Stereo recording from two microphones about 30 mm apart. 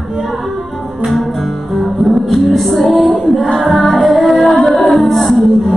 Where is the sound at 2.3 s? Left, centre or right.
Centre.